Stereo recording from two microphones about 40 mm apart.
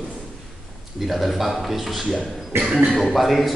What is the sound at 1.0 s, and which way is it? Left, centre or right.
A man's voice, centre.